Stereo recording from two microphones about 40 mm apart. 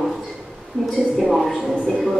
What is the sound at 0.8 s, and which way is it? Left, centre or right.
A woman's voice, centre.